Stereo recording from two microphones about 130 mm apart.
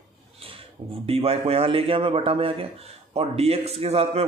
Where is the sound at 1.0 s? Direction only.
50° right (ahead or behind).